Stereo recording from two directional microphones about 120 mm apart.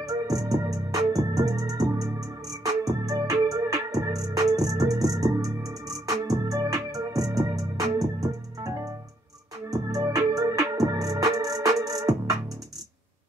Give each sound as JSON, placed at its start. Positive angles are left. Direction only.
{"t": 0.0, "sound": "music", "side_deg": -30}